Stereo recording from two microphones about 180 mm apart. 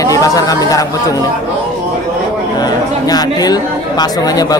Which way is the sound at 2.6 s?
20° left (ahead or behind).